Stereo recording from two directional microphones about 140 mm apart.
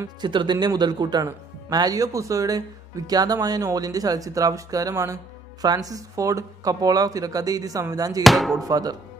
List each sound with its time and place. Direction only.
0.0 s speech: 35° right (ahead or behind)
8.2 s music: centre (ahead or behind)
8.6 s speech: 25° right (ahead or behind)